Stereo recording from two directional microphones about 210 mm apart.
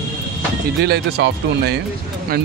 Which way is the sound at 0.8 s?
55° right (ahead or behind).